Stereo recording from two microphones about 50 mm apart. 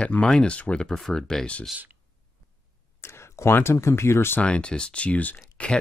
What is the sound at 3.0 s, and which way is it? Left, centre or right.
Speech, left.